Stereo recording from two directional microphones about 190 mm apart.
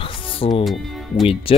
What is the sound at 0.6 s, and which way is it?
Speech, centre (ahead or behind).